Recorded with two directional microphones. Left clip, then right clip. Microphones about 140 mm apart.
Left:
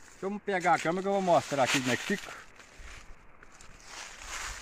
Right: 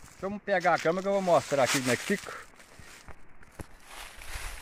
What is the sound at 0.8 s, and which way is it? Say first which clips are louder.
Speech: right 1 dB; 40° right (ahead or behind).